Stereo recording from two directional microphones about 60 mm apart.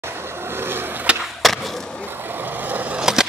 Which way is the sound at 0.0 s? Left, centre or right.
Right.